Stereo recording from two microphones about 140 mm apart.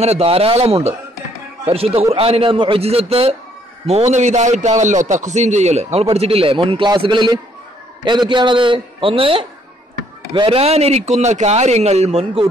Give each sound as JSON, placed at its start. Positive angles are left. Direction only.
{"t": 0.0, "sound": "a man's voice", "side_deg": -45}